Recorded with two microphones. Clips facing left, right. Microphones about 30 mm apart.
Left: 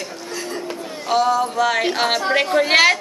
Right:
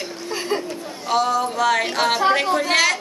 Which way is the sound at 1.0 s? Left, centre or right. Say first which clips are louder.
Left 2 dB; centre.